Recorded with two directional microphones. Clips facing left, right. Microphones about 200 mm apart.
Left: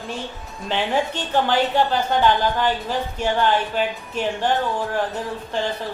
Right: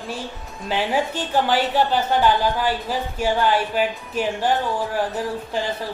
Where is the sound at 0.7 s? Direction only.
5° right (ahead or behind).